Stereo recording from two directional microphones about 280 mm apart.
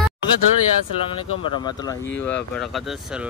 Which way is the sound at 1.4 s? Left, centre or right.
Centre.